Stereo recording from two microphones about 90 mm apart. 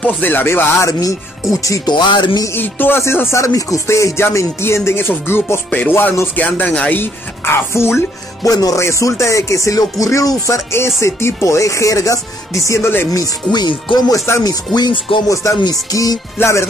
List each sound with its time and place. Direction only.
0.0 s music: 20° left (ahead or behind)
1.5 s speech: 40° left (ahead or behind)
1.9 s music: 55° left (ahead or behind)
2.5 s music: 25° left (ahead or behind)
8.5 s speech: 45° left (ahead or behind); by 13.2 s 25° left (ahead or behind)
13.5 s speech: 60° left (ahead or behind)
15.2 s speech: 35° left (ahead or behind)